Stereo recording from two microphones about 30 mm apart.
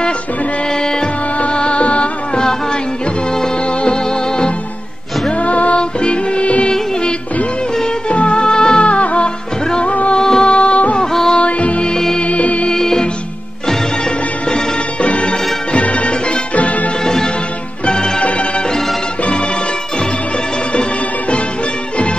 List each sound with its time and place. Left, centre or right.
0.7 s music: left
1.4 s music: left
2.3 s music: left
5.3 s music: left
5.8 s music: left
8.1 s music of bollywood: left
8.8 s music: left
10.1 s music: centre
10.4 s music of bollywood: left
11.3 s music: left
12.7 s music: centre
15.0 s music: left
16.5 s music: left
17.0 s music: left